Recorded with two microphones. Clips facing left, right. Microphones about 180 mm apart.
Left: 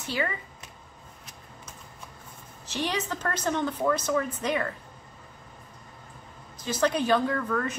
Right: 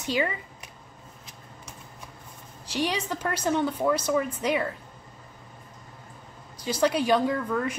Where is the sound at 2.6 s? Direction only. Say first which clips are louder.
Right 2 dB; 10° right (ahead or behind).